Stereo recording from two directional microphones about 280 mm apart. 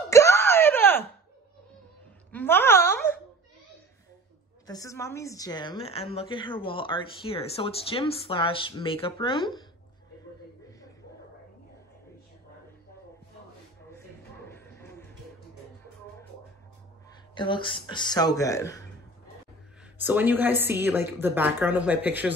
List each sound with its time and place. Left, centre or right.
0.1 s wail: centre
2.3 s a sound: centre
4.6 s a woman's voice: centre
14.5 s a sound: centre
17.4 s a woman's voice: centre
20.0 s a woman's voice: centre